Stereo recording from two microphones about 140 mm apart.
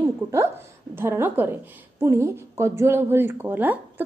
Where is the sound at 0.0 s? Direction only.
20° right (ahead or behind).